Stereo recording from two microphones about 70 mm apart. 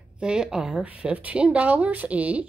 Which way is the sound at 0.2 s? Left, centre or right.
Centre.